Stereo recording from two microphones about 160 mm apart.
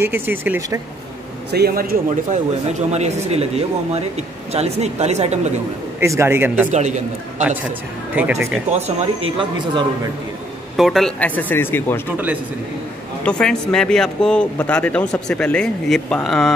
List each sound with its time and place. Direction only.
0.0 s a man's voice: 15° right (ahead or behind)
1.5 s a man's voice: 80° right
2.9 s speech: 45° right (ahead or behind)
5.9 s a man's voice: 15° right (ahead or behind)
6.7 s speech: 45° right (ahead or behind)
8.1 s speech: 10° right (ahead or behind)
8.7 s speech: 40° right (ahead or behind)
10.8 s speech: centre (ahead or behind)
13.2 s speech: 5° left (ahead or behind)